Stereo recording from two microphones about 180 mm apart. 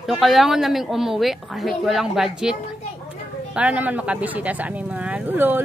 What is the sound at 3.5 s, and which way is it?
Speech, 5° right (ahead or behind).